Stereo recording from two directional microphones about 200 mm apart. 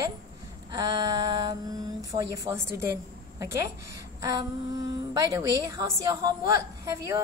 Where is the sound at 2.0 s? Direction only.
20° right (ahead or behind).